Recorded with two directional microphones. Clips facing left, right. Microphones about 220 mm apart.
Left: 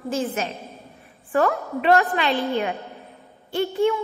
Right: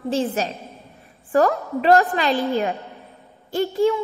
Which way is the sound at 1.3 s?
35° right (ahead or behind).